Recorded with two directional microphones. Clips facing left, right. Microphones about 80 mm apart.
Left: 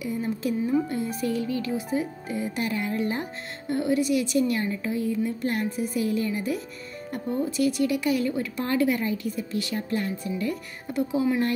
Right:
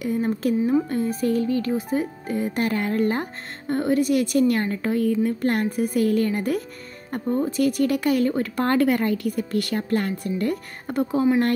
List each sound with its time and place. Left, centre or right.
0.0 s speech: right